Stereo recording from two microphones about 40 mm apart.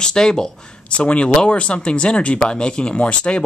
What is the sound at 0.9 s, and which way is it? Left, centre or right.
Speech, left.